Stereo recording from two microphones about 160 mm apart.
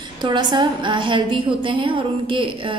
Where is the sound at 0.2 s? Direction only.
30° right (ahead or behind).